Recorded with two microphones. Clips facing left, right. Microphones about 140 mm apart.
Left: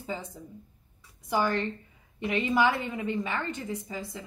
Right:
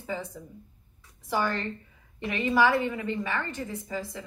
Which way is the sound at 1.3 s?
20° left (ahead or behind).